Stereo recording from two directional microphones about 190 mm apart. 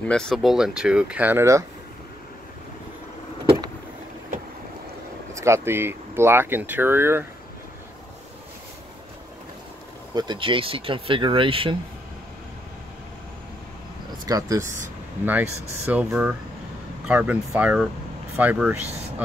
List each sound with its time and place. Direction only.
0.0 s speech: 5° left (ahead or behind); by 1.6 s 15° right (ahead or behind)
5.3 s speech: 15° right (ahead or behind)
10.1 s speech: 25° right (ahead or behind)
14.2 s speech: 20° right (ahead or behind)